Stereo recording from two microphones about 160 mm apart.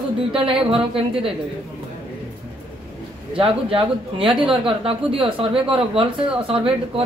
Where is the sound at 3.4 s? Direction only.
35° right (ahead or behind).